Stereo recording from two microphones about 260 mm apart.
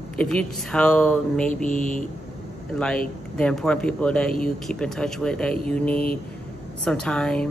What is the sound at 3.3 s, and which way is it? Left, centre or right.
Speech, centre.